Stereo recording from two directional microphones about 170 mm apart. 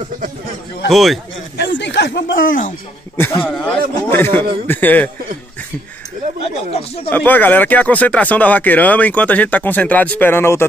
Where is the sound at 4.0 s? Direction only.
15° left (ahead or behind).